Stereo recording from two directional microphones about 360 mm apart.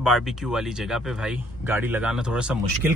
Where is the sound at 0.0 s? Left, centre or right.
Centre.